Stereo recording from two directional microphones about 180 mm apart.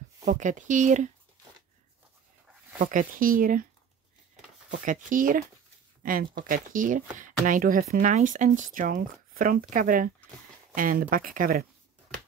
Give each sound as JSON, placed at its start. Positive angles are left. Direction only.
{"t": 0.2, "sound": "speech", "side_deg": -45}
{"t": 2.8, "sound": "speech", "side_deg": -50}
{"t": 4.6, "sound": "speech", "side_deg": -45}